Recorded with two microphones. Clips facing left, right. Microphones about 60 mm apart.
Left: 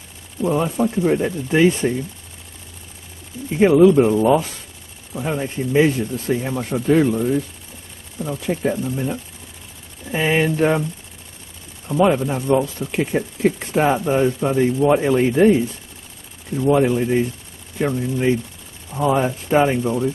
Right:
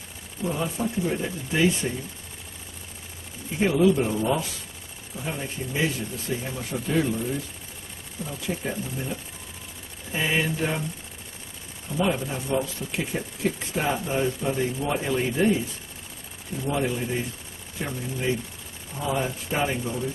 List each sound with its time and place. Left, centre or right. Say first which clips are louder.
0.4 s speech: left 8 dB; left
3.5 s speech: left 9 dB; left
8.6 s speech: left 9 dB; left
10.1 s speech: left 7 dB; left
11.9 s speech: left 9 dB; left
16.6 s speech: left 10 dB; left